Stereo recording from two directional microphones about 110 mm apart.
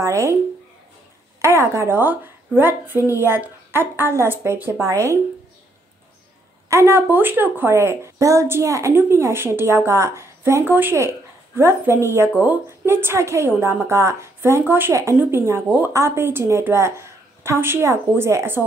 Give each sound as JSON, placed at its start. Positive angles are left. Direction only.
{"t": 0.0, "sound": "speech", "side_deg": -25}
{"t": 1.4, "sound": "speech", "side_deg": -25}
{"t": 6.7, "sound": "speech", "side_deg": -25}